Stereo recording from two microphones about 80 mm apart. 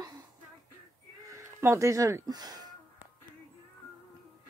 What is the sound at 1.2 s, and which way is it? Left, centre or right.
Speech, right.